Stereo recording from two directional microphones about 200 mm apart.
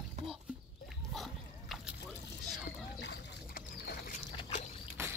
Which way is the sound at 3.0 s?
55° left (ahead or behind).